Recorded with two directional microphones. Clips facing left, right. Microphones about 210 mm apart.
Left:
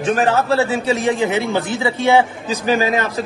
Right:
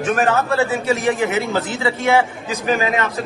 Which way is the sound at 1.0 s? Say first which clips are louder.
Left 1 dB; 20° left (ahead or behind).